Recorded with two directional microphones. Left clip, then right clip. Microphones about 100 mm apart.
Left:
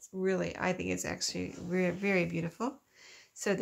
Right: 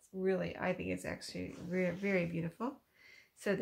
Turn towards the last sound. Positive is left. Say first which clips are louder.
# left 3 dB
turn(degrees=45)  # may be behind; listen again after turning